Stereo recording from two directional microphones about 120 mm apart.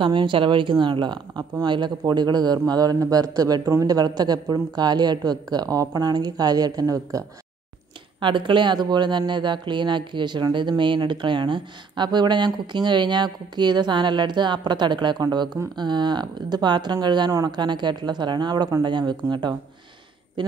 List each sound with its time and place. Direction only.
0.0 s speech: 45° right (ahead or behind)
8.2 s speech: 45° right (ahead or behind)